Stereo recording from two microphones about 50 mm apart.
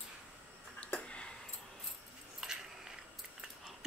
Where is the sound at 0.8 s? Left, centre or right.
Left.